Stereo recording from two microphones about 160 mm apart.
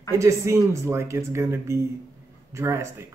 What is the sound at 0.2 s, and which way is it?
Speech, 15° right (ahead or behind).